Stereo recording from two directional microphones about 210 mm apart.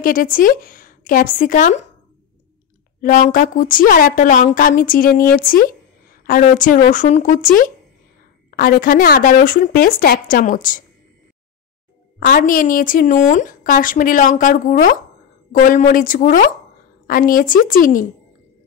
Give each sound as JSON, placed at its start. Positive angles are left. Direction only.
{"t": 0.0, "sound": "speech", "side_deg": 40}
{"t": 3.0, "sound": "speech", "side_deg": 40}
{"t": 8.5, "sound": "speech", "side_deg": 45}
{"t": 12.2, "sound": "speech", "side_deg": 40}